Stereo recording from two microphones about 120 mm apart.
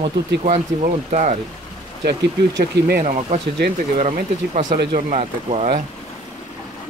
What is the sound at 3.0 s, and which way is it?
Speech, 70° right (ahead or behind).